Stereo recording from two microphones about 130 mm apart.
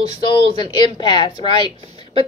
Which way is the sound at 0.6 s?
35° left (ahead or behind).